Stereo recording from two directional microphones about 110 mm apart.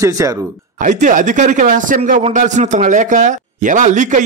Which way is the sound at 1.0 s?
90° right.